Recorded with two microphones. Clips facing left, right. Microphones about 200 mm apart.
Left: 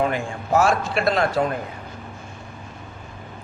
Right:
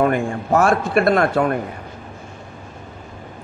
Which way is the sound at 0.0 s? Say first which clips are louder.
Right 5 dB; 55° right (ahead or behind).